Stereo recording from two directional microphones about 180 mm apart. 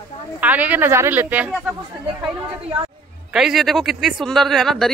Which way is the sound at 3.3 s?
5° right (ahead or behind).